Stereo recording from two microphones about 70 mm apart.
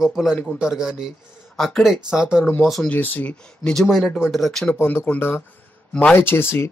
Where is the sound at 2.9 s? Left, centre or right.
Left; by 4.7 s centre.